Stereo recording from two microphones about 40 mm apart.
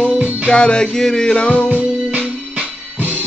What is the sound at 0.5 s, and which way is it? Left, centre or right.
Music, left.